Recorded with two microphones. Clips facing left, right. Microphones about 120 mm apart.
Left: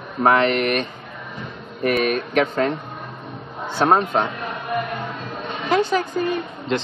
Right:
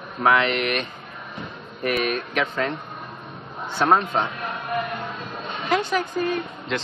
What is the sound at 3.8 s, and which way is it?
Speech, 40° left (ahead or behind).